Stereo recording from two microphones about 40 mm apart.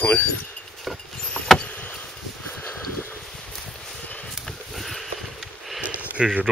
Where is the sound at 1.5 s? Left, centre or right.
Centre.